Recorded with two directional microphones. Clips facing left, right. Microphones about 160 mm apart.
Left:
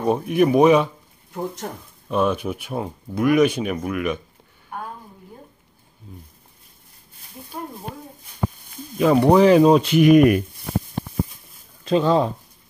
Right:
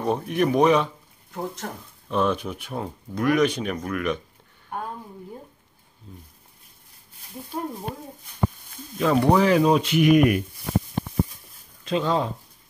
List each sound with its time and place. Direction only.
0.0 s speech: 10° left (ahead or behind)
6.1 s speech: 10° left (ahead or behind)
8.9 s speech: 15° left (ahead or behind); by 10.4 s 40° left (ahead or behind)
11.8 s speech: 35° left (ahead or behind)